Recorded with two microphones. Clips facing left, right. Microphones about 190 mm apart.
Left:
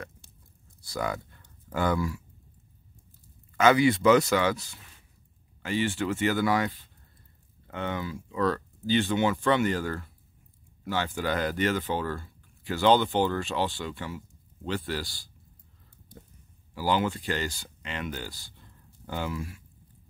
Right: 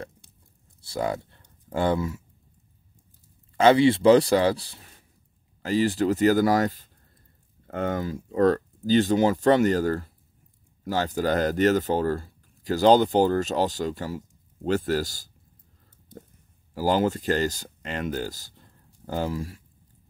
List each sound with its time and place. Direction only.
0.7 s speech: 30° right (ahead or behind)
3.5 s speech: 30° right (ahead or behind)
16.7 s speech: 40° right (ahead or behind)